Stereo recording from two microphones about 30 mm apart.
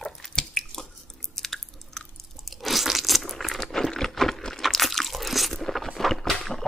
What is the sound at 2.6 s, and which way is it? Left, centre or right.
Crunch, centre.